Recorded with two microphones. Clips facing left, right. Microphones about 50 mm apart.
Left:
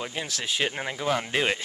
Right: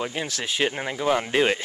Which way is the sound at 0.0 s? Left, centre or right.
Centre.